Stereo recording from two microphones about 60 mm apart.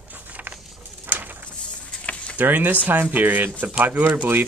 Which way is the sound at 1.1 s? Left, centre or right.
Right.